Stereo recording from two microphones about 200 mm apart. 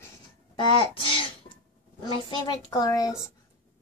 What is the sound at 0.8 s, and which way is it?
A child's voice, 25° left (ahead or behind).